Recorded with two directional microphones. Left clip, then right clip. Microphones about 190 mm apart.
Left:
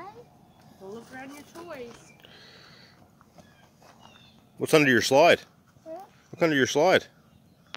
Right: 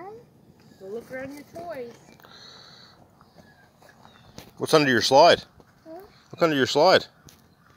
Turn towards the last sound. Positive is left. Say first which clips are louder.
# right 3 dB
turn(degrees=10)  # may be behind; listen again after turning